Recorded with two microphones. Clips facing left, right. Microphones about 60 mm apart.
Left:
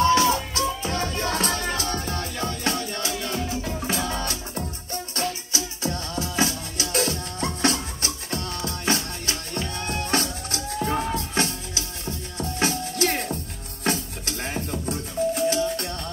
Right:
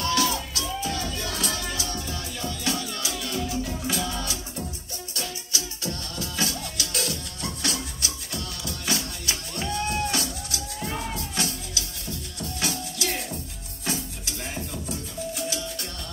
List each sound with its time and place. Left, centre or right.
0.0 s music: left
5.5 s music: left